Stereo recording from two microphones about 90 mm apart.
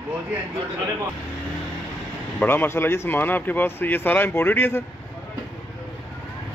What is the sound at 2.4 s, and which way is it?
Speech, 25° left (ahead or behind).